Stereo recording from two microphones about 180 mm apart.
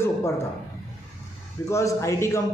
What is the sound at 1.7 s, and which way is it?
Speech, 15° left (ahead or behind).